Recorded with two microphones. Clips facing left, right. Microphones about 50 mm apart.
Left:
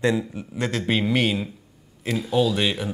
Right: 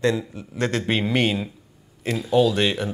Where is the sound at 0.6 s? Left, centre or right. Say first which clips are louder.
Right 1 dB; centre.